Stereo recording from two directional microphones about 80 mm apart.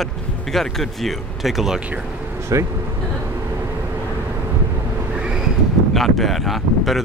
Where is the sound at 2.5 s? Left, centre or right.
Right.